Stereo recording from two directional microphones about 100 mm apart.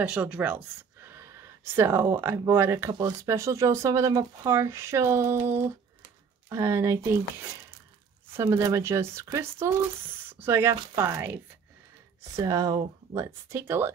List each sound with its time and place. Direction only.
0.0 s speech: 10° right (ahead or behind); by 4.5 s 40° right (ahead or behind)
4.5 s speech: 25° right (ahead or behind)
8.4 s speech: 30° right (ahead or behind)
12.4 s speech: 35° right (ahead or behind)